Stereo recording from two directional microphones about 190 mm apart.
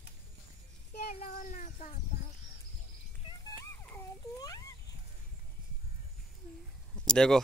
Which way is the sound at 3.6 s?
15° left (ahead or behind).